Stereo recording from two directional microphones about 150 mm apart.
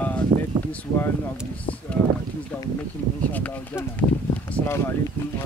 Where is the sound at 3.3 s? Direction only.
10° left (ahead or behind).